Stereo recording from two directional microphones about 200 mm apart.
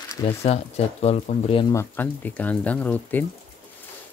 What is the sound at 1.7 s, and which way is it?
Speech, 10° left (ahead or behind).